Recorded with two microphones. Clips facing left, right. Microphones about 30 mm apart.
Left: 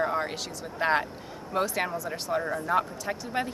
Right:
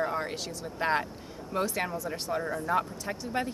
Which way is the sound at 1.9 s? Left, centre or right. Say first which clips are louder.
Left 1 dB; centre.